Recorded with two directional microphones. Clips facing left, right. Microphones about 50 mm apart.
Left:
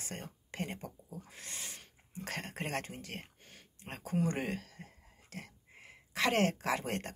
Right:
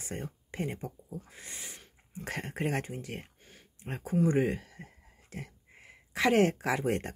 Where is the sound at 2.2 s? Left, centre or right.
Centre.